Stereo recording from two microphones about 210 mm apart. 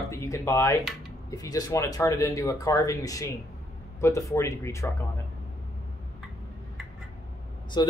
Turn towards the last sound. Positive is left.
turn(degrees=20)  # may be behind; listen again after turning